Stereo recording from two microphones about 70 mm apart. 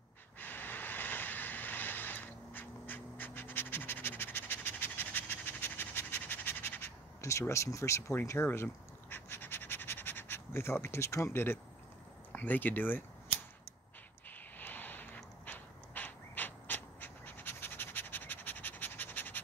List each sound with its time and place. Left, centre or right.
0.4 s vehicle: left
9.1 s bird: left
12.3 s speech: left
14.6 s a sound: left
15.4 s pant: left